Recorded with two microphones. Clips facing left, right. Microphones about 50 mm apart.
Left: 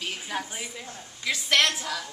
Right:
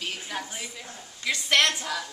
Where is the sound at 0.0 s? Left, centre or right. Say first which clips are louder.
Left 1 dB; centre.